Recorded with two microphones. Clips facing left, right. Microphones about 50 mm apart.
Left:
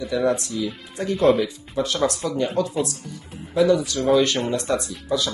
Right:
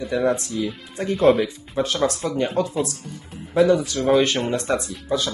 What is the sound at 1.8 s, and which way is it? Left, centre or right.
Speech, right.